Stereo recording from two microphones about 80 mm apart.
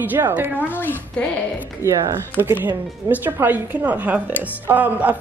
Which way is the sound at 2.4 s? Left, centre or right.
Right.